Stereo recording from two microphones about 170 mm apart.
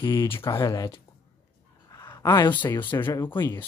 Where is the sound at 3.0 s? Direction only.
10° left (ahead or behind).